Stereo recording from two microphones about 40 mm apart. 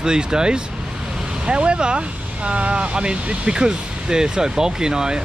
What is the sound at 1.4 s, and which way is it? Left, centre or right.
Speech, right.